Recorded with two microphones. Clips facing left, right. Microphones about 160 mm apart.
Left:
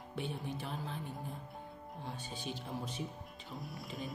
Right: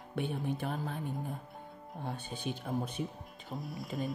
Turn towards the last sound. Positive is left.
turn(degrees=0)  # may be behind; listen again after turning